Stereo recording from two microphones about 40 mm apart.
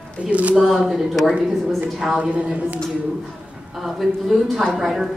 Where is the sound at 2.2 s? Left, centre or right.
Right.